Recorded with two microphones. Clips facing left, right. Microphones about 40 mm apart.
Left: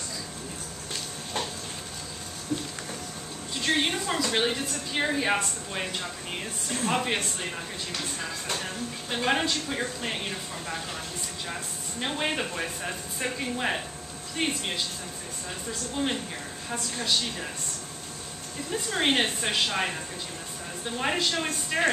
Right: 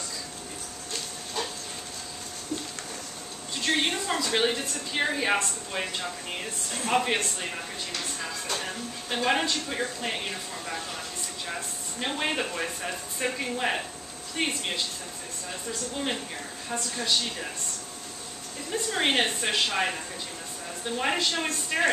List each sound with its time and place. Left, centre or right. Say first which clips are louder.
2.5 s a sound: left 3 dB; centre
3.6 s speech: even; centre
8.5 s speech: even; centre
11.4 s speech: right 1 dB; centre
16.6 s speech: right 1 dB; centre
18.7 s speech: even; centre